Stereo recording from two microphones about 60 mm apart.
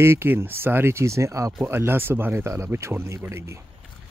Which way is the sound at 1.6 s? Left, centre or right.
Right.